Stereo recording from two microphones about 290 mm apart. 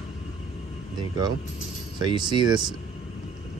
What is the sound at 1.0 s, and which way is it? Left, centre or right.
Speech, centre.